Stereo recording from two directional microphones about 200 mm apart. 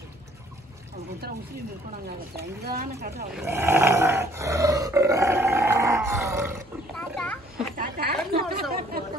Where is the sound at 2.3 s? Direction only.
50° right (ahead or behind).